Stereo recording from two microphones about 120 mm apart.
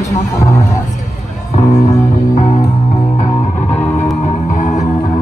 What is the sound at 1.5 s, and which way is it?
Music, 65° left (ahead or behind).